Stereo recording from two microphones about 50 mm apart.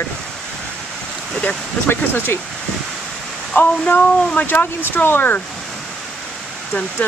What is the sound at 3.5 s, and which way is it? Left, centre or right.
Speech, left.